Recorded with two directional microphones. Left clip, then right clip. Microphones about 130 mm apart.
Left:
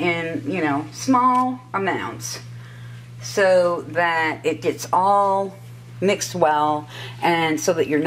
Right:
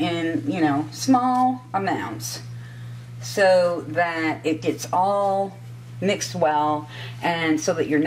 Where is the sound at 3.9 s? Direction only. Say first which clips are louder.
Left 3 dB; 25° left (ahead or behind).